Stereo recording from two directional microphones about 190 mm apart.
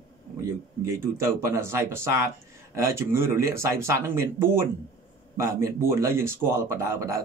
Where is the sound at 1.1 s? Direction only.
15° right (ahead or behind).